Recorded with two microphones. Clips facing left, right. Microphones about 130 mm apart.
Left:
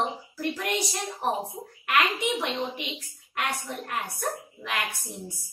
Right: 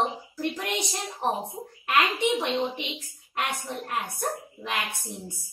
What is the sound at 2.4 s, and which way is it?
A woman's voice, 20° right (ahead or behind).